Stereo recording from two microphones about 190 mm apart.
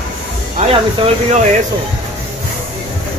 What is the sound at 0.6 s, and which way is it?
Snake, 40° right (ahead or behind).